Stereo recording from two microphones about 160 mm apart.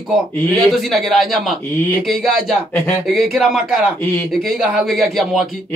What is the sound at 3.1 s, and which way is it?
Speech, centre (ahead or behind).